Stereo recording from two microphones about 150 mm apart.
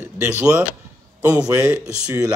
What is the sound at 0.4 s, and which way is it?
Speech, 10° right (ahead or behind).